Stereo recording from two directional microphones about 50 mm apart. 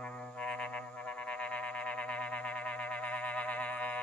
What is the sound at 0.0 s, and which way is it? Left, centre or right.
Frog, left.